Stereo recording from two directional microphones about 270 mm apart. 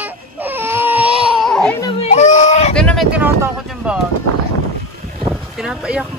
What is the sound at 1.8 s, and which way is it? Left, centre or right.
Baby cry, left.